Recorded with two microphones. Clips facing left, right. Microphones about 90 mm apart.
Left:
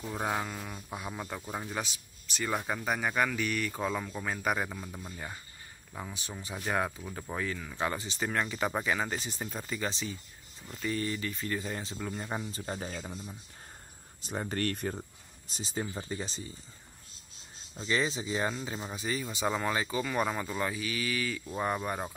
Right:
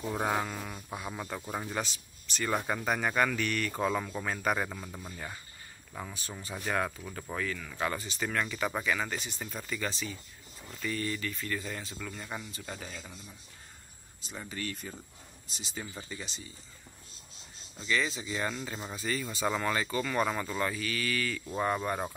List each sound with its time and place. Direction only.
0.1 s speech: centre (ahead or behind)
5.1 s speech: 10° left (ahead or behind); by 13.3 s 35° left (ahead or behind)
14.2 s speech: 55° left (ahead or behind)
15.5 s speech: 40° left (ahead or behind)
17.8 s speech: 25° left (ahead or behind)
18.5 s speech: 15° left (ahead or behind)